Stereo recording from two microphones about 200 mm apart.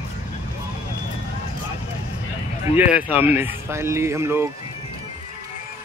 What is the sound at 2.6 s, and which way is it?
Speech, 10° right (ahead or behind).